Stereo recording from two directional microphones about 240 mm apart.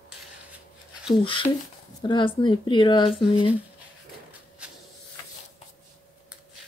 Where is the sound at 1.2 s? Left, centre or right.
Left.